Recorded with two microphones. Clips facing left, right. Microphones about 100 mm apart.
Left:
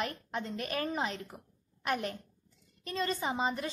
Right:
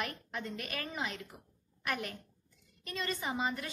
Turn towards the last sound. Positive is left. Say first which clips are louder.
# left 3 dB
turn(degrees=25)  # may be behind; listen again after turning